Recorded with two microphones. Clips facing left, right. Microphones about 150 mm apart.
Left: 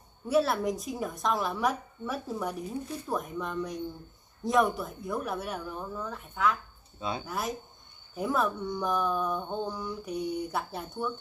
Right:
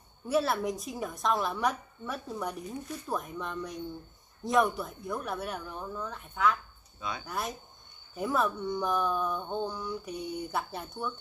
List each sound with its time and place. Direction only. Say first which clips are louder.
0.3 s speech: left 2 dB; centre (ahead or behind)
7.0 s speech: left 4 dB; 30° left (ahead or behind)
7.2 s speech: left 2 dB; centre (ahead or behind)